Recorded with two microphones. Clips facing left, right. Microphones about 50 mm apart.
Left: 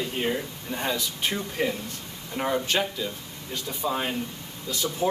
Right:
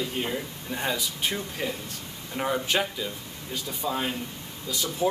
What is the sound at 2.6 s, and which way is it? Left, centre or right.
Speech, centre.